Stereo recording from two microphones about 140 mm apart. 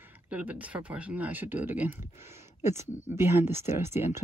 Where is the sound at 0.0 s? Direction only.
10° right (ahead or behind).